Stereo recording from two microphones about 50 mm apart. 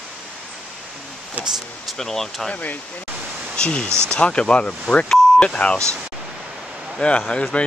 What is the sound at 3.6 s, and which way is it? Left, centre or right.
Speech, centre.